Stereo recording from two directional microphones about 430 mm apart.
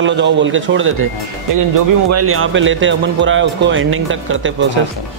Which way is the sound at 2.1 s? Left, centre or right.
Right.